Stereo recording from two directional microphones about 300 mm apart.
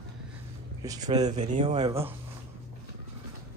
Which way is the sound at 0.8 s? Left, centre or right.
Centre.